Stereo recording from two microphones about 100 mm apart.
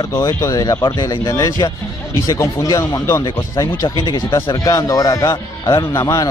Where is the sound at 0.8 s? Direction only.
50° left (ahead or behind).